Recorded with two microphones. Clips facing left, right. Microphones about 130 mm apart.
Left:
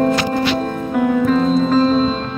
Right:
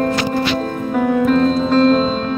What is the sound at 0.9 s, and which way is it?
Music, 5° left (ahead or behind).